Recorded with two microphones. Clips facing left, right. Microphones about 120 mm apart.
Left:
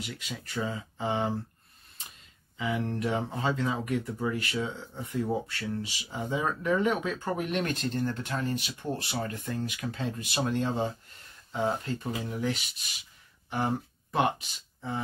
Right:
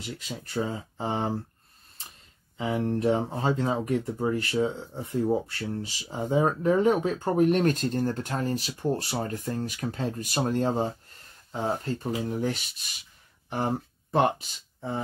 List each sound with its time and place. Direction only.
0.0 s speech: 35° right (ahead or behind)